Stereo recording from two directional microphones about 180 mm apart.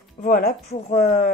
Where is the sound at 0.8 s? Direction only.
40° left (ahead or behind).